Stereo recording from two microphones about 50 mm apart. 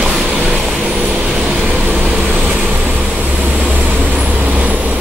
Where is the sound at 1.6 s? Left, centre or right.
Right.